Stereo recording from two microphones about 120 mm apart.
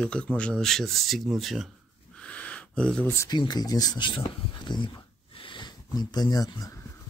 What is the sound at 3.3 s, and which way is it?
Speech, 35° left (ahead or behind).